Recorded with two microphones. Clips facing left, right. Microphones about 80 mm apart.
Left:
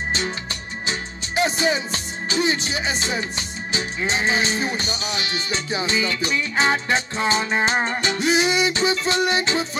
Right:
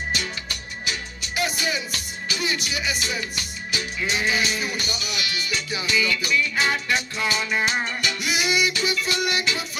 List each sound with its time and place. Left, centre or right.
0.8 s music: left